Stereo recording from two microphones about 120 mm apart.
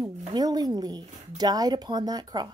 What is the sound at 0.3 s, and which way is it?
Speech, 35° right (ahead or behind).